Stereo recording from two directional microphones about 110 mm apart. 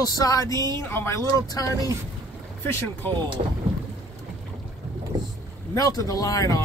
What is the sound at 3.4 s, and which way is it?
Speech, 90° right.